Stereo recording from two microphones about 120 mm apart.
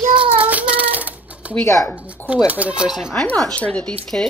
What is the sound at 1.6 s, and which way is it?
Speech, 25° left (ahead or behind).